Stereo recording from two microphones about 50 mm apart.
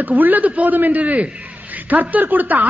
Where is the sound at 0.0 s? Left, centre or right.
Right.